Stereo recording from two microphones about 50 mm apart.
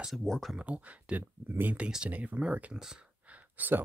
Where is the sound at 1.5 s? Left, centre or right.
Right.